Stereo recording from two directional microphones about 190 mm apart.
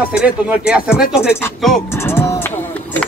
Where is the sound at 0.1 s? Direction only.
5° right (ahead or behind).